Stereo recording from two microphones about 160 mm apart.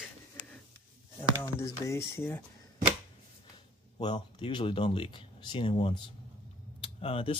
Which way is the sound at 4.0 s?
30° left (ahead or behind).